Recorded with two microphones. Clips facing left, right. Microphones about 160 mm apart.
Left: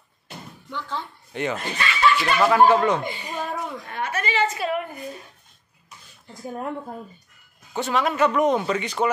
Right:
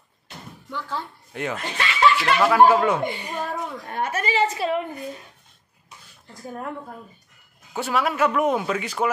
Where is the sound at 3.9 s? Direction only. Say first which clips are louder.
Right 2 dB; 45° right (ahead or behind); by 4.8 s 30° right (ahead or behind).